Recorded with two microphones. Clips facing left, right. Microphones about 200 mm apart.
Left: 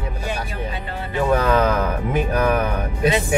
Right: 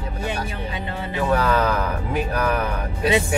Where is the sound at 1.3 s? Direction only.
15° left (ahead or behind).